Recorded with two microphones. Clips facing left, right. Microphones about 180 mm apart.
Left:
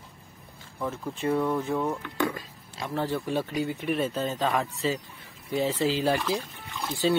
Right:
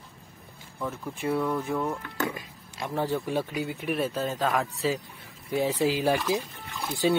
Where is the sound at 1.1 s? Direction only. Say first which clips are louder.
Left 2 dB; 10° right (ahead or behind).